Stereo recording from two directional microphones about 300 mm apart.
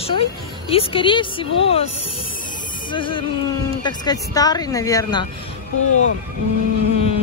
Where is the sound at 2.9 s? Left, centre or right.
Centre.